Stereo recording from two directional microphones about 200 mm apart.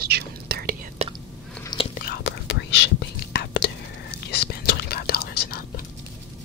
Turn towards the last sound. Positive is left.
turn(degrees=50)  # may be behind; listen again after turning